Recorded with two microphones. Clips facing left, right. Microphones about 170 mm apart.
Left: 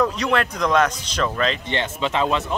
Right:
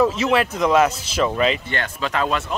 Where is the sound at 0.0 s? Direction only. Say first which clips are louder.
Right 3 dB; 5° right (ahead or behind).